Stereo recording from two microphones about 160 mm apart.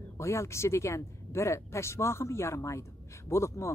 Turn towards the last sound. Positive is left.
turn(degrees=20)  # may be behind; listen again after turning